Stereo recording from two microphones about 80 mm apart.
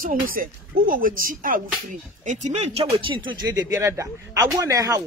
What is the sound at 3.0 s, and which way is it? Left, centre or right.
Speech, right.